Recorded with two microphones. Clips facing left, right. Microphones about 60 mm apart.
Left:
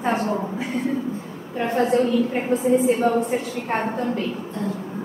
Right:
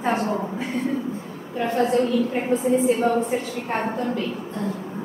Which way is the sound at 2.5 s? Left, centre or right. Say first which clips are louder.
Left 1 dB; centre.